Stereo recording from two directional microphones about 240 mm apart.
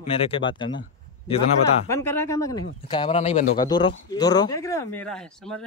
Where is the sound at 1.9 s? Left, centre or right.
Centre.